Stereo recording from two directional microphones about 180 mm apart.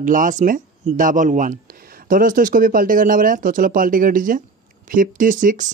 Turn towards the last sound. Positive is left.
turn(degrees=-45)  # may be behind; listen again after turning